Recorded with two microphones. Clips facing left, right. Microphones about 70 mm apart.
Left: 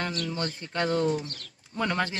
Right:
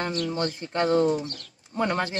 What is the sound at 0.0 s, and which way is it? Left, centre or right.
A man's voice, right.